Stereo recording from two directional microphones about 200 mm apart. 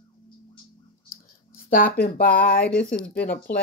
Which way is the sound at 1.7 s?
45° left (ahead or behind).